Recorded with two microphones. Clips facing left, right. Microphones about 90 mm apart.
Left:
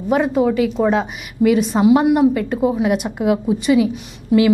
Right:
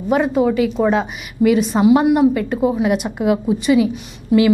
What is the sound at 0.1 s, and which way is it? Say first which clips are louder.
A woman's voice: even; 15° right (ahead or behind).